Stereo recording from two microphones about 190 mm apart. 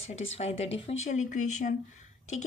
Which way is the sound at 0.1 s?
30° left (ahead or behind).